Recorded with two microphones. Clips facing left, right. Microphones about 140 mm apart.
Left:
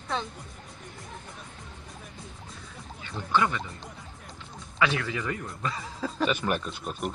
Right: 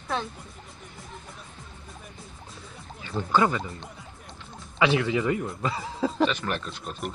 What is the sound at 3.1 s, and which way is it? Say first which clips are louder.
Speech: right 3 dB; 35° right (ahead or behind).